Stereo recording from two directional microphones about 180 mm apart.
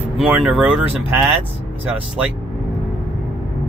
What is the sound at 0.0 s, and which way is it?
Speech, 5° right (ahead or behind).